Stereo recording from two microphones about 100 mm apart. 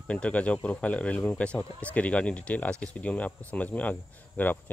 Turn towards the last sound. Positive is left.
turn(degrees=20)  # may be behind; listen again after turning